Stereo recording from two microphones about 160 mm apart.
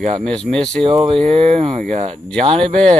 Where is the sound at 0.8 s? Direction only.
35° right (ahead or behind).